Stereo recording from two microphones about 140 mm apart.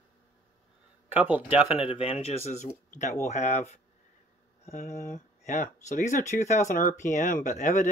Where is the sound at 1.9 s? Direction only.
40° left (ahead or behind).